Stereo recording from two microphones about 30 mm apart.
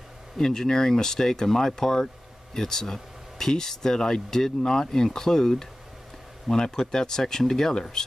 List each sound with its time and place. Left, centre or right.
0.4 s speech: left